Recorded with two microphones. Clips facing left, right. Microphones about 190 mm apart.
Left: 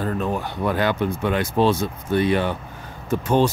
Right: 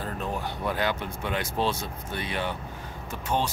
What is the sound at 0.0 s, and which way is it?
Speech, 65° left (ahead or behind).